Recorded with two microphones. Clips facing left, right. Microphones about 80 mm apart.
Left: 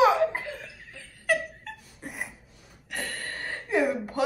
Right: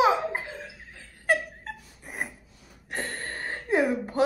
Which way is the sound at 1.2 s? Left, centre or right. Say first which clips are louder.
Right 1 dB; right.